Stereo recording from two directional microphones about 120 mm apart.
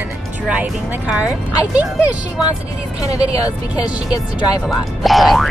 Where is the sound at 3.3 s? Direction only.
30° left (ahead or behind).